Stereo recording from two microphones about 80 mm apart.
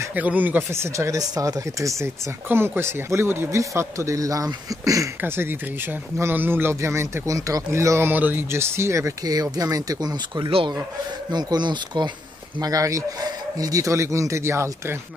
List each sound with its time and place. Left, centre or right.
0.1 s speech: right
0.7 s a man's voice: right
2.4 s a man's voice: right
5.2 s a man's voice: right
8.1 s a man's voice: right
11.3 s speech: right
12.5 s a man's voice: right